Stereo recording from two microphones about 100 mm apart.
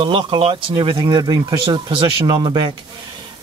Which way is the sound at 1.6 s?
60° right (ahead or behind).